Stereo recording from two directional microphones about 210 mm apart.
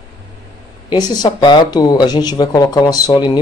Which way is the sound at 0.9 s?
20° left (ahead or behind).